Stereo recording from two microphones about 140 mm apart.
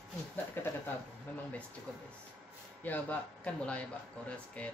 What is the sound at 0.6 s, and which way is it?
Speech, 15° left (ahead or behind).